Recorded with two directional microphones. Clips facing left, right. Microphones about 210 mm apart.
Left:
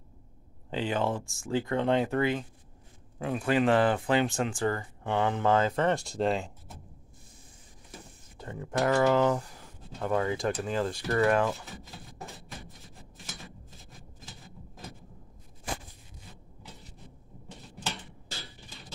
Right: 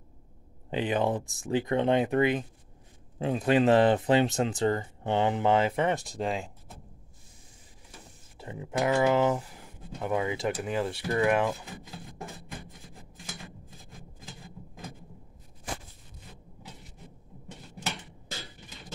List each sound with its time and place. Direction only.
0.7 s speech: 15° right (ahead or behind)
6.0 s speech: centre (ahead or behind)
8.4 s speech: 10° right (ahead or behind)